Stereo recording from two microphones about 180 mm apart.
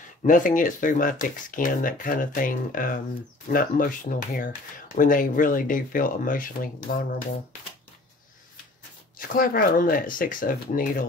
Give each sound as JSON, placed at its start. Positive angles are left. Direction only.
{"t": 0.2, "sound": "speech", "side_deg": 45}
{"t": 9.3, "sound": "speech", "side_deg": 55}